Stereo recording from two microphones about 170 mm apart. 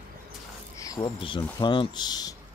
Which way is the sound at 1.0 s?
30° left (ahead or behind).